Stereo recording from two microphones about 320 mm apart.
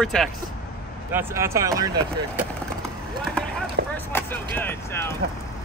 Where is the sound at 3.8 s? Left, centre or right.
Right.